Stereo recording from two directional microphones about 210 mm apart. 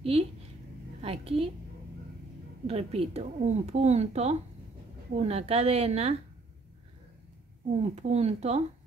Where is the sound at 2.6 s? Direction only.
30° right (ahead or behind).